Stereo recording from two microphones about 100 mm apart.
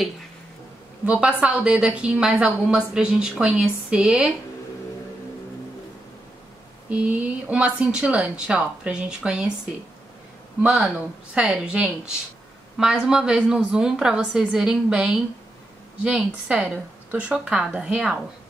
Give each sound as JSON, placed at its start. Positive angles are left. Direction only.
{"t": 1.0, "sound": "a woman's voice", "side_deg": -10}
{"t": 6.9, "sound": "a woman's voice", "side_deg": -15}
{"t": 10.6, "sound": "a woman's voice", "side_deg": -5}